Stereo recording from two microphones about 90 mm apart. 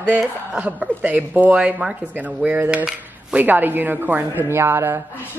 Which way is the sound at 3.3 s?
20° right (ahead or behind).